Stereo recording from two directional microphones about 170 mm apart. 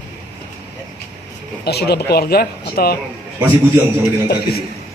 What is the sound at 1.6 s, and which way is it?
Speech, 70° left (ahead or behind).